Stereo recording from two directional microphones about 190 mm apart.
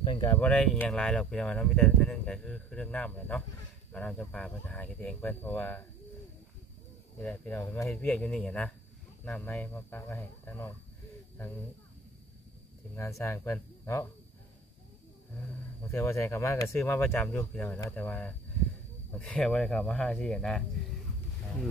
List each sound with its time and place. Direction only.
0.0 s a sound: 25° left (ahead or behind)
0.3 s speech: 10° left (ahead or behind)
7.2 s speech: 10° left (ahead or behind)
12.9 s speech: 15° left (ahead or behind)
15.9 s speech: 15° left (ahead or behind)